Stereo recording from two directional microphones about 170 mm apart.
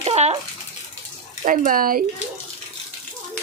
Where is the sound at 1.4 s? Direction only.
50° right (ahead or behind).